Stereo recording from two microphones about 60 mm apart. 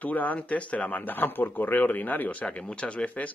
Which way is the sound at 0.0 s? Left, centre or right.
Left.